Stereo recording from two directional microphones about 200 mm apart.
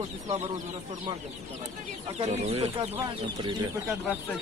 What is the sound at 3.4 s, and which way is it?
Speech, 20° right (ahead or behind).